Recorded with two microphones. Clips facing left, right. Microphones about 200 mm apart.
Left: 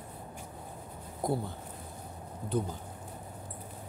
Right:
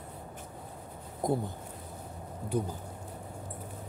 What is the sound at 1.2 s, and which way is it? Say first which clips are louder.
Speech: right 2 dB; 20° right (ahead or behind).